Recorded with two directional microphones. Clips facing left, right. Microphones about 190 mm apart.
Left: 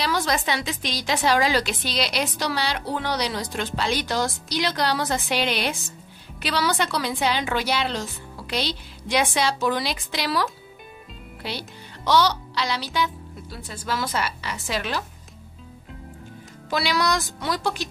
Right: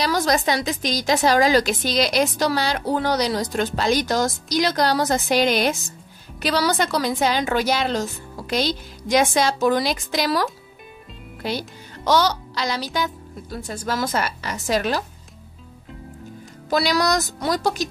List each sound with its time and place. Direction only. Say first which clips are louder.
0.0 s a woman's voice: right 4 dB; 40° right (ahead or behind)
11.4 s speech: right 6 dB; 45° right (ahead or behind)
16.7 s a woman's voice: right 4 dB; 40° right (ahead or behind)